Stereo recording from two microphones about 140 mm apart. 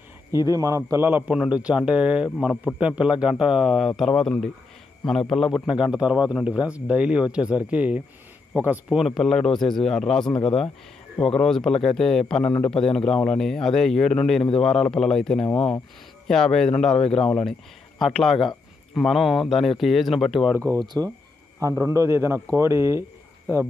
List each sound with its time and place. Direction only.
0.3 s a man's voice: 25° right (ahead or behind); by 15.4 s 5° left (ahead or behind)
15.4 s speech: 40° left (ahead or behind)
16.3 s a man's voice: 5° left (ahead or behind)
20.7 s a man's voice: 30° right (ahead or behind)